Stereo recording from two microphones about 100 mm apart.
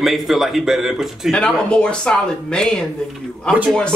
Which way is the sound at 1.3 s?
10° left (ahead or behind).